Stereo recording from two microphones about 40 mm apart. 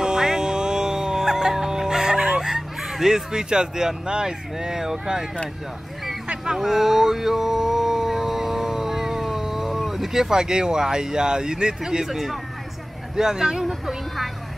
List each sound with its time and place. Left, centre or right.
0.0 s music: centre
6.6 s speech: centre